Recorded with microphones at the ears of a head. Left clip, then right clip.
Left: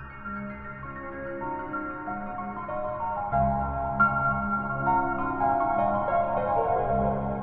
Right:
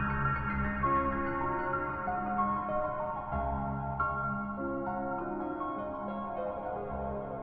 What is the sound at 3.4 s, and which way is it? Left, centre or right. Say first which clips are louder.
Music: left 9 dB; left.